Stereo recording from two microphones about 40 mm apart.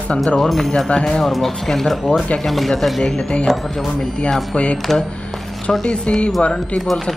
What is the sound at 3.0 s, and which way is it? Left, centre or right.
Speech, centre.